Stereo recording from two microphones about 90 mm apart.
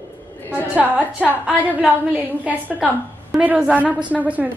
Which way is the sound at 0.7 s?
15° right (ahead or behind).